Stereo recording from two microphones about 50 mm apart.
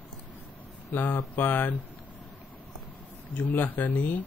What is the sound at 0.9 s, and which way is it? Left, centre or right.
Speech, left.